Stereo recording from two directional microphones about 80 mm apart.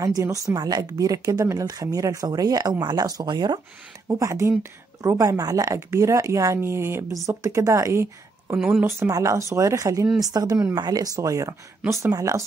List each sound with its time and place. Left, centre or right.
0.0 s speech: right
0.6 s speech: right
4.1 s speech: right
5.8 s speech: right
8.5 s a woman's voice: centre
9.1 s speech: right
11.1 s speech: right